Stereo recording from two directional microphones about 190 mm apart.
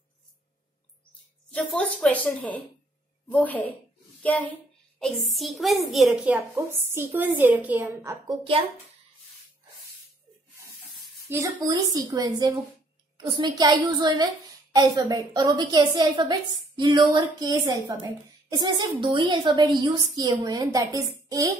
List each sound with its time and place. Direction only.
1.5 s a woman's voice: 5° left (ahead or behind); by 8.4 s 15° right (ahead or behind)
11.2 s a woman's voice: 15° right (ahead or behind)